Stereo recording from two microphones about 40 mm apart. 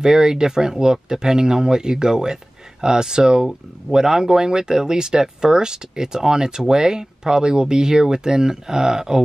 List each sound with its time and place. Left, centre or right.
0.0 s speech: centre